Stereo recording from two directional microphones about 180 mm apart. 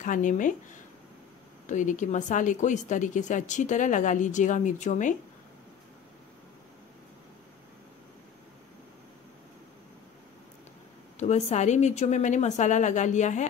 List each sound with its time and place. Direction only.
0.0 s speech: 45° left (ahead or behind)
1.7 s speech: 45° left (ahead or behind)
11.1 s speech: 40° left (ahead or behind)